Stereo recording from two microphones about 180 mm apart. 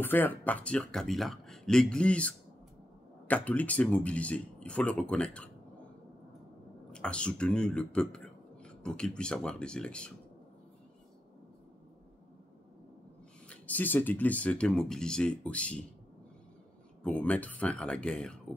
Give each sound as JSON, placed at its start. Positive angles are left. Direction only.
{"t": 0.0, "sound": "speech", "side_deg": 10}
{"t": 6.9, "sound": "speech", "side_deg": 5}
{"t": 13.5, "sound": "speech", "side_deg": 10}
{"t": 17.0, "sound": "speech", "side_deg": 5}